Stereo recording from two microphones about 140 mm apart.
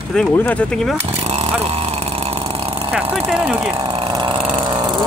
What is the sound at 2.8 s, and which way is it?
Speech, 10° right (ahead or behind).